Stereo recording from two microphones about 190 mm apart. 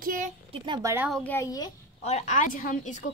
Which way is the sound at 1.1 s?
10° left (ahead or behind).